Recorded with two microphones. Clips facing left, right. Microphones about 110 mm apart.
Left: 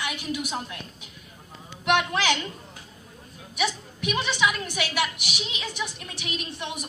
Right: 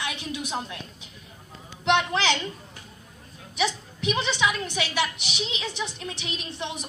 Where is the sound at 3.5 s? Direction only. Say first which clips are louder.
Right 1 dB; 30° right (ahead or behind).